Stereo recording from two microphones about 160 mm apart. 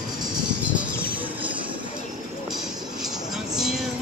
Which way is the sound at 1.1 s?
10° right (ahead or behind).